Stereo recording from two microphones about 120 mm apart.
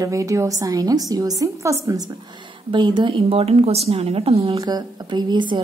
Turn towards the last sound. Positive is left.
turn(degrees=-40)  # may be behind; listen again after turning